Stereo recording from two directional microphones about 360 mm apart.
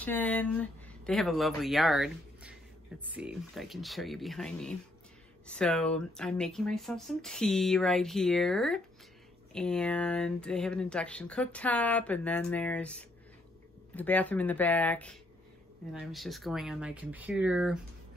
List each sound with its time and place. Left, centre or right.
0.0 s speech: centre